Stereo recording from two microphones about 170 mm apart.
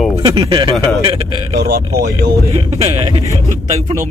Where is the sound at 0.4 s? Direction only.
25° right (ahead or behind).